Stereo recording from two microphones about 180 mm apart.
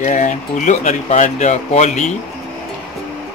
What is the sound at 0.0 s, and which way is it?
Speech, 40° left (ahead or behind).